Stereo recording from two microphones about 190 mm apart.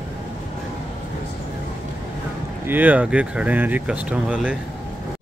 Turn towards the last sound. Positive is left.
turn(degrees=-5)  # may be behind; listen again after turning